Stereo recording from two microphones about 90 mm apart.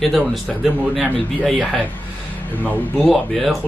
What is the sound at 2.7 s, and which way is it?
Speech, 20° left (ahead or behind).